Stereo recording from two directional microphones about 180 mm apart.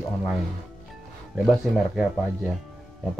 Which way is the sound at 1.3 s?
Centre (ahead or behind).